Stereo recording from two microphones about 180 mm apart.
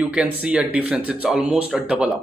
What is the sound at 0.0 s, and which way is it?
Speech, 5° right (ahead or behind).